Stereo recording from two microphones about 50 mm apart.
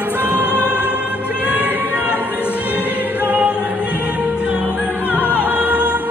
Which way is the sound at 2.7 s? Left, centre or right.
Right.